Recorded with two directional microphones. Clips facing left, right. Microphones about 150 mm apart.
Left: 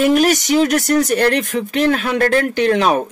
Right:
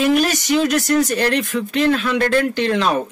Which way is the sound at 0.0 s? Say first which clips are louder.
Left 3 dB; 50° left (ahead or behind).